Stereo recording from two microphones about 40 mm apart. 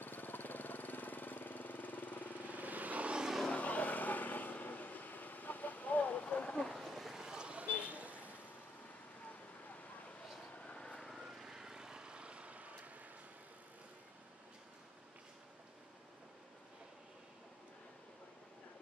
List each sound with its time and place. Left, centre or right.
0.0 s engine: left
2.5 s vehicle: right
3.5 s vehicle: left
6.7 s vehicle: centre
7.2 s vehicle: centre; by 8.3 s right
10.7 s vehicle: left
11.1 s vehicle: centre; by 12.9 s right